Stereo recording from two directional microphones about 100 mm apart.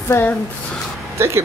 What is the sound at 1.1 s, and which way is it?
Speech, 25° right (ahead or behind).